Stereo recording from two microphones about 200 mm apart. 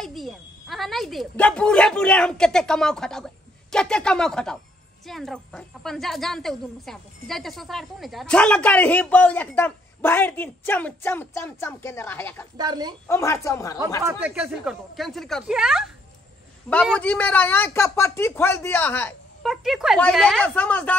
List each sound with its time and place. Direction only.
0.0 s a woman's voice: centre (ahead or behind)
12.5 s a woman's voice: 20° right (ahead or behind)
13.1 s a woman's voice: 15° left (ahead or behind)
14.0 s a woman's voice: 5° right (ahead or behind); by 19.1 s 10° left (ahead or behind)
19.4 s a woman's voice: centre (ahead or behind)